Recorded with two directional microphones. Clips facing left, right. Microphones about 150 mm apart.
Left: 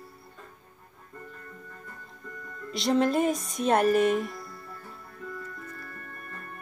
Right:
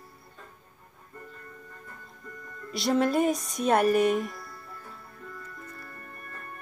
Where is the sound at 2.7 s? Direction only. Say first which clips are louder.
Left 1 dB; centre (ahead or behind).